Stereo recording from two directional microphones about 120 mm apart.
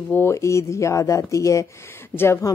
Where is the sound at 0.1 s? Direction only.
20° left (ahead or behind).